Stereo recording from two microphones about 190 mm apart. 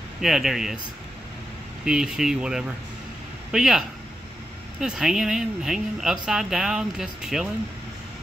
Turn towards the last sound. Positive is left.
turn(degrees=-5)  # may be behind; listen again after turning